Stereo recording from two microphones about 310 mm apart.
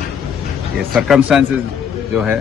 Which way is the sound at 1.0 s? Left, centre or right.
Centre.